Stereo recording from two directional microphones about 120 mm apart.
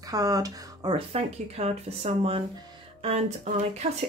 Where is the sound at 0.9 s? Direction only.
60° right (ahead or behind).